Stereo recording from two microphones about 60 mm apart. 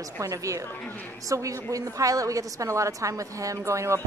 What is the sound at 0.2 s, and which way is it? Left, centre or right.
A woman's voice, right.